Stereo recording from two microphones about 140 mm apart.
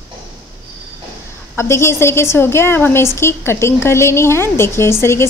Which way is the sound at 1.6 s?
20° left (ahead or behind).